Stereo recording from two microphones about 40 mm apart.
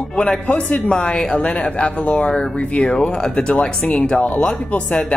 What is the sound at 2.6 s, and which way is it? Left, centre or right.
Speech, left.